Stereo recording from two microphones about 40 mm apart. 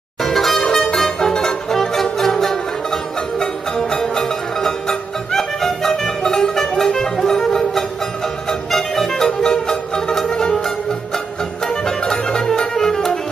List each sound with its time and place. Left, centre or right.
0.2 s music: centre
11.6 s music: centre